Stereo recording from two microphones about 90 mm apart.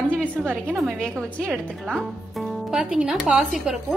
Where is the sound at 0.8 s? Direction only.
Centre (ahead or behind).